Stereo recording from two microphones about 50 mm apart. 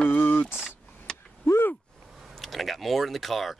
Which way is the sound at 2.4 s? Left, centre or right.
Centre.